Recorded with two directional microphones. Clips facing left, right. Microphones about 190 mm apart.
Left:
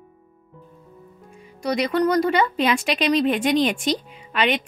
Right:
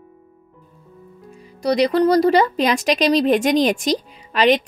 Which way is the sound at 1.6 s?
35° right (ahead or behind).